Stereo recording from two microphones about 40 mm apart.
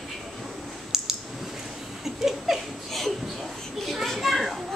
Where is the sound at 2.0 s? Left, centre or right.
Centre.